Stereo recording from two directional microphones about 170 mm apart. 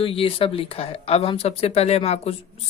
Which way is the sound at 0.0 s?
35° left (ahead or behind).